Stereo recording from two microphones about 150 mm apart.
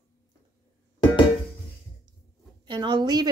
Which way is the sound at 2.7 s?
30° right (ahead or behind).